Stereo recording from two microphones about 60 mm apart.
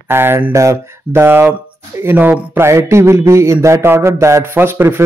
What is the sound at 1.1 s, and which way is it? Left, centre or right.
A man's voice, right.